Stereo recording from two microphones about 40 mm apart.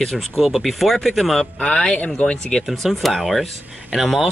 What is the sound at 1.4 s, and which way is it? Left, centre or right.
Speech, left.